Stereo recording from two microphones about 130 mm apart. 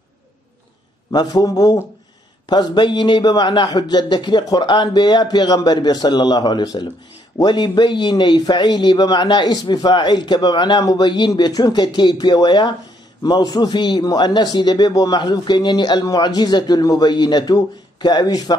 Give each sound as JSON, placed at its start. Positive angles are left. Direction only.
{"t": 1.1, "sound": "a man's voice", "side_deg": 30}